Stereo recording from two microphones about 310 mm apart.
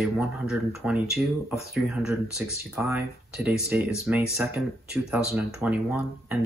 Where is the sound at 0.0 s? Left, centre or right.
Centre.